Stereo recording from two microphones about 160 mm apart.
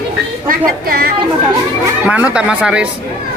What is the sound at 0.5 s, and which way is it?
Speech, 70° right (ahead or behind).